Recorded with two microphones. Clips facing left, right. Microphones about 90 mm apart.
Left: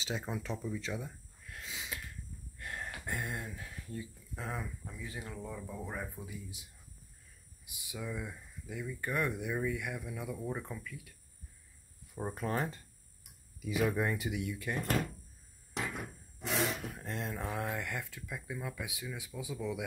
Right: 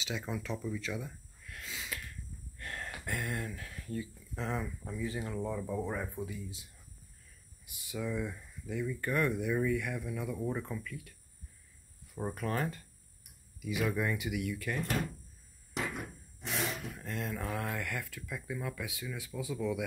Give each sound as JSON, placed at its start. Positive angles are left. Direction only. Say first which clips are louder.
{"t": 0.0, "sound": "speech", "louder": "even", "side_deg": 35}
{"t": 1.7, "sound": "a sound", "louder": "right 1 dB", "side_deg": 20}
{"t": 2.6, "sound": "speech", "louder": "even", "side_deg": 15}
{"t": 6.2, "sound": "speech", "louder": "right 4 dB", "side_deg": 10}
{"t": 7.6, "sound": "speech", "louder": "right 4 dB", "side_deg": 15}
{"t": 12.4, "sound": "speech", "louder": "even", "side_deg": 25}
{"t": 16.4, "sound": "speech", "louder": "left 2 dB", "side_deg": 35}